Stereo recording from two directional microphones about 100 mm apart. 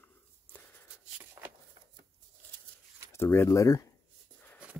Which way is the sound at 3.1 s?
25° left (ahead or behind).